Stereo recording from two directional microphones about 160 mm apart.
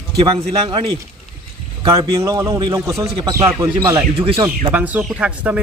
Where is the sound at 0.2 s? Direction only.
30° right (ahead or behind).